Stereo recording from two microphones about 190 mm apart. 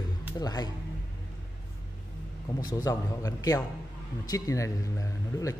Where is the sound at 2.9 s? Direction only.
20° left (ahead or behind).